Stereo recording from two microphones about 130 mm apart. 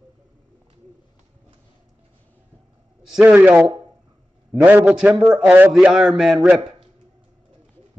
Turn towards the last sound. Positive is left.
turn(degrees=-5)  # may be behind; listen again after turning